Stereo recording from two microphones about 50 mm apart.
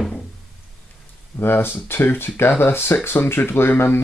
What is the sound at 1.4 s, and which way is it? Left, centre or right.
Speech, left.